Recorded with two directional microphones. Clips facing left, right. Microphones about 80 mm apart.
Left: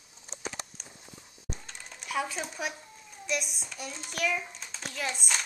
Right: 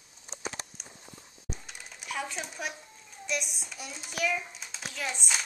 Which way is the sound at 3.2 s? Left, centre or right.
Centre.